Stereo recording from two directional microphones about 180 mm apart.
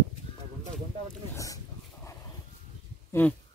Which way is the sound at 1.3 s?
20° left (ahead or behind).